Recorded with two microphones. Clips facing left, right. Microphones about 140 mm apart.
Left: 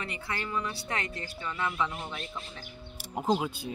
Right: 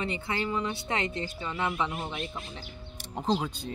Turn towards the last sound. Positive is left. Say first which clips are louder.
# left 1 dB
turn(degrees=10)  # may be behind; listen again after turning